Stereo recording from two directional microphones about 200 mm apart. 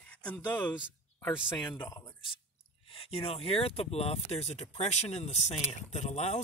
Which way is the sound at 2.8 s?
30° left (ahead or behind).